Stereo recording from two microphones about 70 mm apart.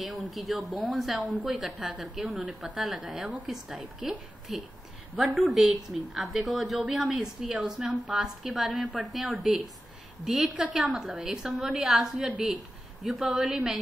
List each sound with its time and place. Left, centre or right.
0.0 s a woman's voice: centre
1.3 s a woman's voice: centre
1.6 s a woman's voice: centre
2.4 s a woman's voice: centre
5.2 s a woman's voice: centre
12.3 s a woman's voice: centre
13.0 s a woman's voice: centre